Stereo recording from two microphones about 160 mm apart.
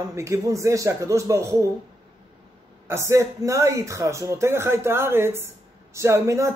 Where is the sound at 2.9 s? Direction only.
15° right (ahead or behind).